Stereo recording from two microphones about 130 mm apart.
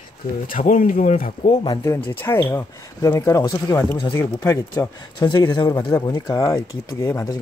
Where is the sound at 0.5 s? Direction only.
90° left.